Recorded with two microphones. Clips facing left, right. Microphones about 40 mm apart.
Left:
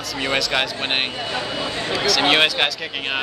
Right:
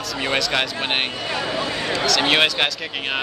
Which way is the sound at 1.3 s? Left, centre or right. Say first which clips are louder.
Right 2 dB; left.